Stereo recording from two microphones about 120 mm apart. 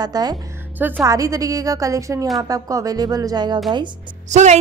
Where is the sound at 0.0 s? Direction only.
35° right (ahead or behind).